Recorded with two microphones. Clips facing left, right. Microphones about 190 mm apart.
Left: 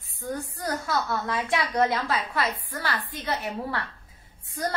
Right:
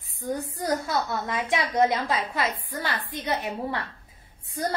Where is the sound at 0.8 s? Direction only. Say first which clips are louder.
Even; 20° right (ahead or behind).